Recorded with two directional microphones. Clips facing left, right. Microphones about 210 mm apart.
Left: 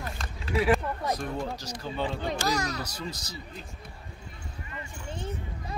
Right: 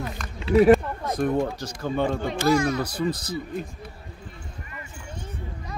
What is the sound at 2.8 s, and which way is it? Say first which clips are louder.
Speech: right 10 dB; 55° right (ahead or behind).